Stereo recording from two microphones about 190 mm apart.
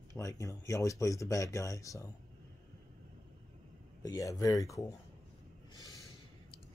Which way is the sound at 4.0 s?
20° left (ahead or behind).